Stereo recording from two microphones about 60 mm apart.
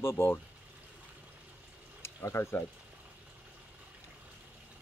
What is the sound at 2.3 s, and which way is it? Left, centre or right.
Speech, left.